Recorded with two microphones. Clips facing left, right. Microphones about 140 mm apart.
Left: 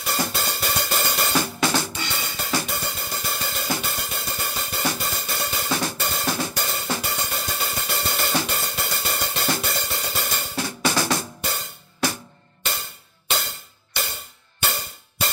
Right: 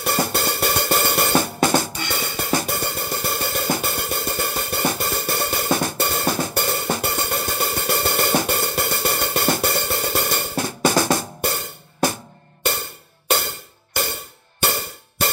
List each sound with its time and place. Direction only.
0.0 s hi-hat: 55° right (ahead or behind)
13.3 s music: 55° right (ahead or behind)